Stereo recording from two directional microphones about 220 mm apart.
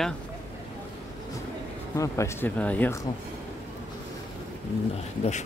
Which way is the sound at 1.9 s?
15° left (ahead or behind).